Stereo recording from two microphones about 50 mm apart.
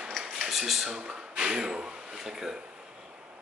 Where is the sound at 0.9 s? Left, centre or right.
Centre.